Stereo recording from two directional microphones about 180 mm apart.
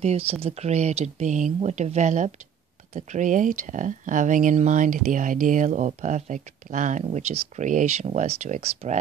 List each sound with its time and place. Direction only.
0.0 s speech: 35° right (ahead or behind)